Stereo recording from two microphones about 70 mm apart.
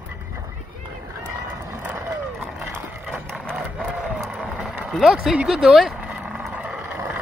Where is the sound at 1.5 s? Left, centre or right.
Right.